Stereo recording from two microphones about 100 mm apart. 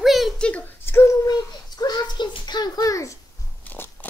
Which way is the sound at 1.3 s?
40° left (ahead or behind).